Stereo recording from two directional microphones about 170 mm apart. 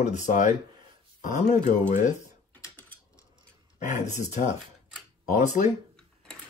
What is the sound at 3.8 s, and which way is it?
Speech, 45° left (ahead or behind).